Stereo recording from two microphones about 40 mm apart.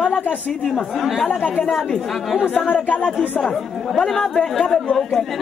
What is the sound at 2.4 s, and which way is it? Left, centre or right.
Speech, left.